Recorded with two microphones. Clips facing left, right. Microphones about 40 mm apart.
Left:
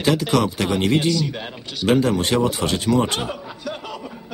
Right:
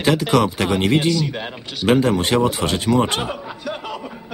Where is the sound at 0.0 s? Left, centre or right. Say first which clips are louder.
Right 2 dB; centre.